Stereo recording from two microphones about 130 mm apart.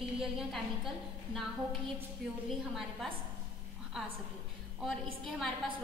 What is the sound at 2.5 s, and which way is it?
Speech, centre (ahead or behind).